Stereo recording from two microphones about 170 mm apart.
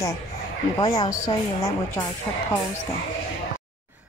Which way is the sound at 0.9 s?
20° left (ahead or behind).